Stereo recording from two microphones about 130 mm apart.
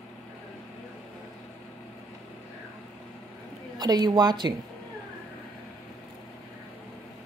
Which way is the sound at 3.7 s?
30° right (ahead or behind).